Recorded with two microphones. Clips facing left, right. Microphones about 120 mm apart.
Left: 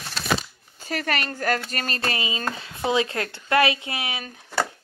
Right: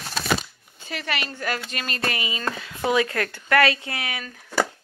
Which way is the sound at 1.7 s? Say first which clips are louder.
Left 1 dB; 35° left (ahead or behind).